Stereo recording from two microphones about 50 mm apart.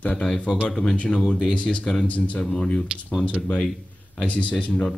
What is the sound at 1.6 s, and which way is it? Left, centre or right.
Speech, left.